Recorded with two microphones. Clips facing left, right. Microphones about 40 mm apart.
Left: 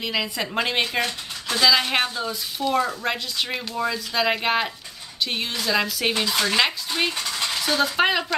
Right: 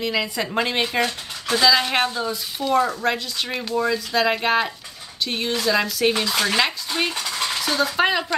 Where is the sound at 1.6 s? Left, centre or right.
Centre.